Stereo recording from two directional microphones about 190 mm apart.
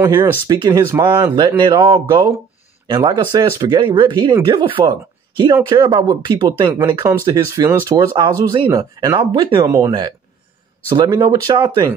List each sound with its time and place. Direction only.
0.0 s speech: 15° right (ahead or behind)